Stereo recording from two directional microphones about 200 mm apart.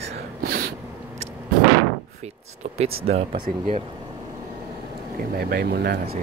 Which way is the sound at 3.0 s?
30° right (ahead or behind).